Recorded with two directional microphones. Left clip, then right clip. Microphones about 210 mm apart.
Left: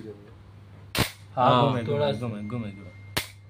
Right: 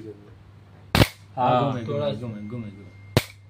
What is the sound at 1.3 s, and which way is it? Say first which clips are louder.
Speech: left 4 dB; 50° left (ahead or behind).